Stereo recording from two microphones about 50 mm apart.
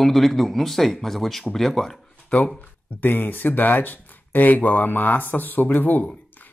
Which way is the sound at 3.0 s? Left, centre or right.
Left.